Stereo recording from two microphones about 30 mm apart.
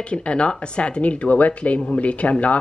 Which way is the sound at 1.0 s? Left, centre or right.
Left.